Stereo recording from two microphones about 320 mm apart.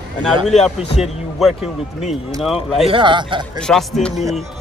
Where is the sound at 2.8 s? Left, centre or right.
Centre.